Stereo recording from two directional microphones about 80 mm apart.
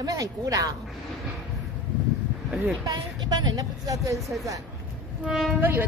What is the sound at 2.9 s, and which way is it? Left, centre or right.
A woman's voice, right.